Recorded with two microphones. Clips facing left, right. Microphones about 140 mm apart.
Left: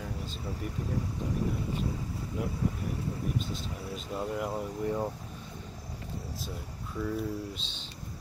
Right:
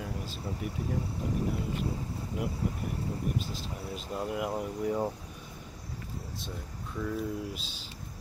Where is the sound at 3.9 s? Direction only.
Centre (ahead or behind).